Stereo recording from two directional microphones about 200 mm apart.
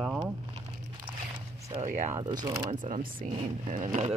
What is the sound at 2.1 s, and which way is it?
Speech, 20° right (ahead or behind).